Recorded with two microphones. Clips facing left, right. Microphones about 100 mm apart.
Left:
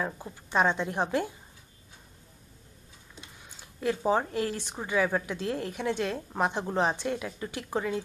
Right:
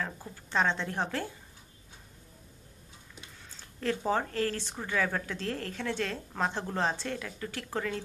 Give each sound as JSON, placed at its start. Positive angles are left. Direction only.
{"t": 0.0, "sound": "speech", "side_deg": 15}
{"t": 3.2, "sound": "speech", "side_deg": 15}